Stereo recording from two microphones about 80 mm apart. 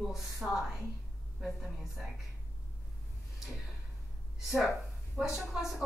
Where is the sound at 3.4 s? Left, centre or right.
Centre.